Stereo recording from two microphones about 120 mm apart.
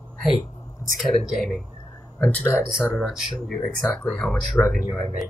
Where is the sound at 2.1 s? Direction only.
15° left (ahead or behind).